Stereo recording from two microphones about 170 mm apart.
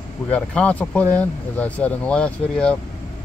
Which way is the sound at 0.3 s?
5° left (ahead or behind).